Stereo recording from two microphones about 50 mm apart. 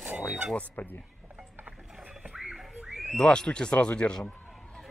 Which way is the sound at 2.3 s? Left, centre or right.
Centre.